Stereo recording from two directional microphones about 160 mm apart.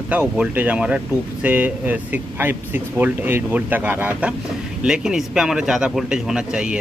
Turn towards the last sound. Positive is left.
turn(degrees=-5)  # may be behind; listen again after turning